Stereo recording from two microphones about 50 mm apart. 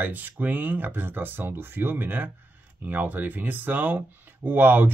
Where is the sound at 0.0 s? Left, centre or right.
Right.